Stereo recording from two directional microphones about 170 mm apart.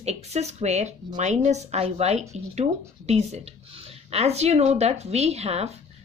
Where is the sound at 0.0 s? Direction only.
40° right (ahead or behind).